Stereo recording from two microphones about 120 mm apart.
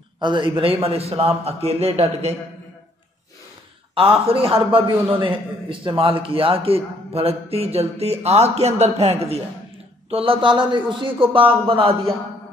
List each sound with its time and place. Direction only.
0.2 s a man's voice: 40° right (ahead or behind); by 2.3 s 60° right (ahead or behind)
3.9 s a man's voice: 50° right (ahead or behind)